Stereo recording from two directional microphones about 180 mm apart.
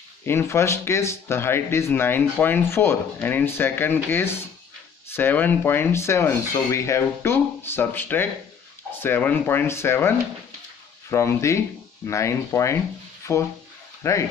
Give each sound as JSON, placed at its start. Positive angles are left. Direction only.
{"t": 0.2, "sound": "speech", "side_deg": 15}